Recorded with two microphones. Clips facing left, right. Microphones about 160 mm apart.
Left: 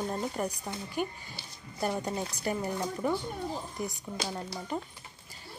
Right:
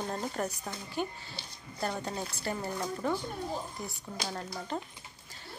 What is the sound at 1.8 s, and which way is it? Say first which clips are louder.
Speech: left 3 dB; 15° left (ahead or behind).